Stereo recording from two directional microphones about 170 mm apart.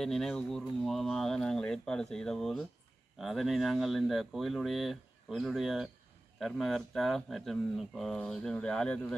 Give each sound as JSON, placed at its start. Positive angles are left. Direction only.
{"t": 0.0, "sound": "speech", "side_deg": 0}